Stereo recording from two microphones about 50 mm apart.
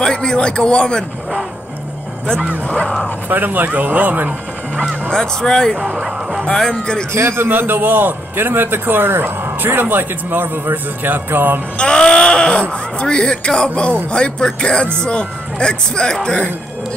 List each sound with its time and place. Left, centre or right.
0.0 s a man's voice: centre
2.6 s a man's voice: centre
3.3 s speech: right
5.1 s a man's voice: centre
5.8 s speech: right
6.7 s a man's voice: centre
7.2 s a man's voice: right
11.8 s speech: centre